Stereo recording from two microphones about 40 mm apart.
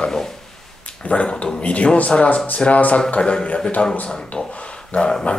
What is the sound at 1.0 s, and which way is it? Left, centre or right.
Speech, left.